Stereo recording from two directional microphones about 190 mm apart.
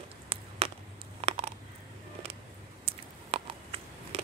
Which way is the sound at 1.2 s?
30° right (ahead or behind).